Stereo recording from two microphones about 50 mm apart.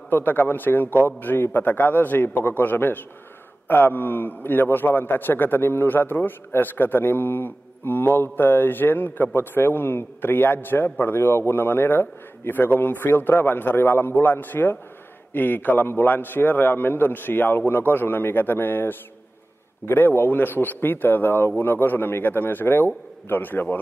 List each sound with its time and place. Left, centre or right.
0.1 s a man's voice: left